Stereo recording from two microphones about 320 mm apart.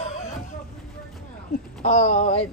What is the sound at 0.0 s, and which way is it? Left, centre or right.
Hubbub, centre.